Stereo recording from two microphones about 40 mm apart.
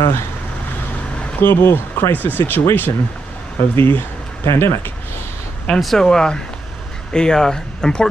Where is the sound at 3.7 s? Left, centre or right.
Left.